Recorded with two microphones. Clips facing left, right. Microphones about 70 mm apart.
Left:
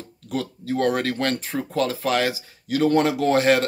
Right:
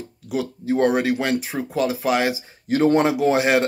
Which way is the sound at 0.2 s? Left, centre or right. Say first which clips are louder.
Right 1 dB; centre.